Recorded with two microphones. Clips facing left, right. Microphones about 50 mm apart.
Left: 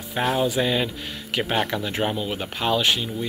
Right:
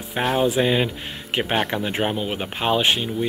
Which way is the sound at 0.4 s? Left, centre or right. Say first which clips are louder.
Right 5 dB; right.